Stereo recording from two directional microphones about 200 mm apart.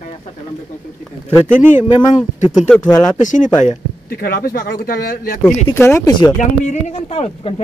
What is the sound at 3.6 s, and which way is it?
Speech, 50° left (ahead or behind).